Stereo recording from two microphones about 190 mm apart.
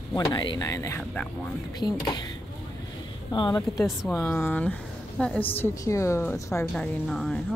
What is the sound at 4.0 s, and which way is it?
Speech, centre (ahead or behind).